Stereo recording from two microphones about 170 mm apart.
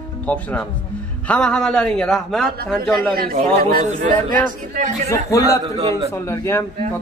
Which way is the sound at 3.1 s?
60° right (ahead or behind).